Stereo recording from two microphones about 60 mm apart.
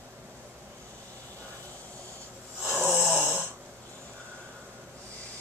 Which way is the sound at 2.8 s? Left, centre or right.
Right.